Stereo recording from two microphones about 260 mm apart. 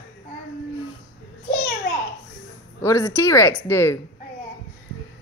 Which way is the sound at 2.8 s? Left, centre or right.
Centre.